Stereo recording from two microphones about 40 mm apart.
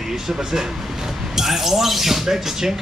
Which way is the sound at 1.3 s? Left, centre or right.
Centre.